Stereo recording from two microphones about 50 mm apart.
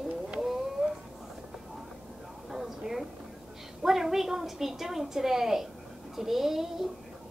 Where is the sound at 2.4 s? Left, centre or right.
Centre.